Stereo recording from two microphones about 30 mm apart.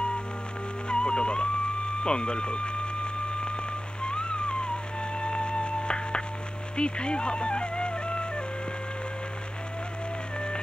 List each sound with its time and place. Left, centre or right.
0.8 s music: left
2.0 s a sound: left
4.0 s music: left